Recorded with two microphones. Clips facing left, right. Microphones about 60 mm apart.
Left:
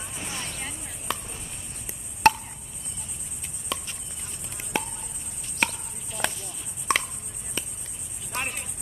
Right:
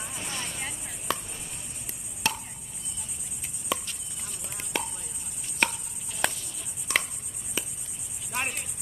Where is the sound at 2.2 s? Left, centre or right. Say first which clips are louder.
Left 12 dB; left.